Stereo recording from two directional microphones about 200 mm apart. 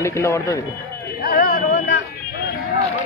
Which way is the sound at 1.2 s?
50° left (ahead or behind).